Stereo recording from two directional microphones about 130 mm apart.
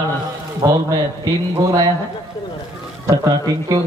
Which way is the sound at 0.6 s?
25° right (ahead or behind).